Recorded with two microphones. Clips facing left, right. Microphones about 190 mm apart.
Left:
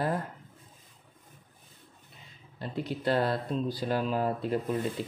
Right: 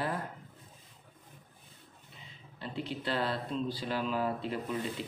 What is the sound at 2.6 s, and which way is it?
Speech, 40° left (ahead or behind).